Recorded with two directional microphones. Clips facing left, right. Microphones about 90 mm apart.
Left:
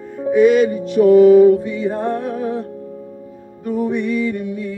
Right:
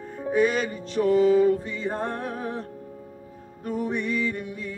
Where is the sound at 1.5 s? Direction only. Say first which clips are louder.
Left 9 dB; 35° right (ahead or behind).